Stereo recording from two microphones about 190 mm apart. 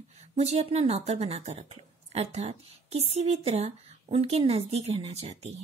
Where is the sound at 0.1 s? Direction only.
35° right (ahead or behind).